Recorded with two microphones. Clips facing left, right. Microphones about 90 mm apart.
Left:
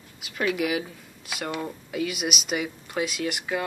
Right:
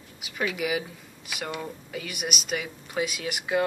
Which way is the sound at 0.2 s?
5° right (ahead or behind).